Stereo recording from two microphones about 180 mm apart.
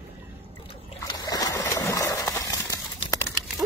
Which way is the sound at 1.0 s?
20° left (ahead or behind).